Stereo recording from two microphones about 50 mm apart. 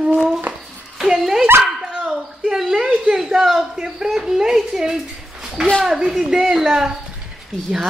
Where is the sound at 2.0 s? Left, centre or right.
Centre.